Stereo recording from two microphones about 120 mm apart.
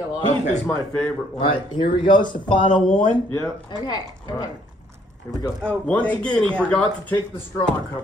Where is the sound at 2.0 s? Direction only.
40° left (ahead or behind).